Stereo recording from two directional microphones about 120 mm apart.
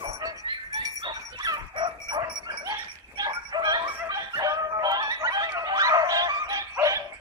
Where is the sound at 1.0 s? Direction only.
35° right (ahead or behind).